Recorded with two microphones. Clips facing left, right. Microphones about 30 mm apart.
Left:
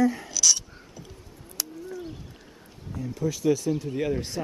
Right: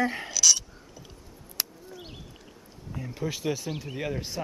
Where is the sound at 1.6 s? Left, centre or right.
Centre.